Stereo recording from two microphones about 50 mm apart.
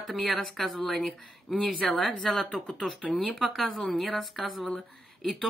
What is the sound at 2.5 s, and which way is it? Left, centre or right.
Speech, centre.